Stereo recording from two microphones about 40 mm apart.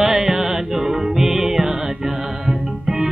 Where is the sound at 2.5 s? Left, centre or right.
Centre.